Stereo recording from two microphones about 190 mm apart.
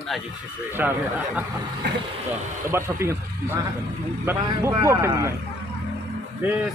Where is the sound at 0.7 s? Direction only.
10° right (ahead or behind).